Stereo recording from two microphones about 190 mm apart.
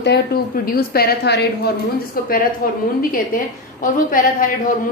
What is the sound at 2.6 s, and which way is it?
Speech, 50° left (ahead or behind).